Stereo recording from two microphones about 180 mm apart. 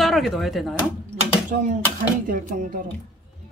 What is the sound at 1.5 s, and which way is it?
Speech, 45° right (ahead or behind).